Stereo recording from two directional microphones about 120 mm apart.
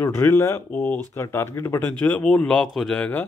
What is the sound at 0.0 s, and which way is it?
Speech, 20° left (ahead or behind).